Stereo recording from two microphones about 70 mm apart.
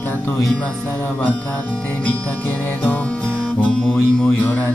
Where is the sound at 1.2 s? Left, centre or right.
Left.